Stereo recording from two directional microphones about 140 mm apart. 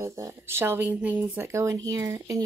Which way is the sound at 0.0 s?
20° right (ahead or behind).